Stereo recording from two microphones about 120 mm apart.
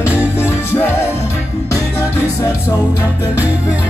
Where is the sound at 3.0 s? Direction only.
15° right (ahead or behind).